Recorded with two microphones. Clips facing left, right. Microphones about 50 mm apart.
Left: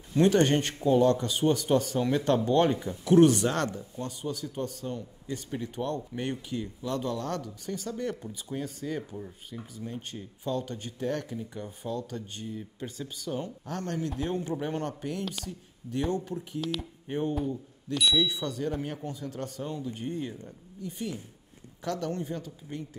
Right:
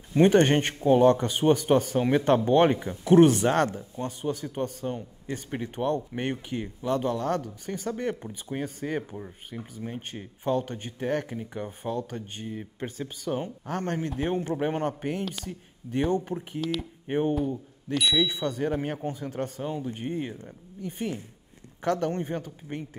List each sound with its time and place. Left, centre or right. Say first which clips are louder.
0.1 s speech: right 3 dB; right
16.0 s speech: right 4 dB; right
16.3 s speech: right 3 dB; right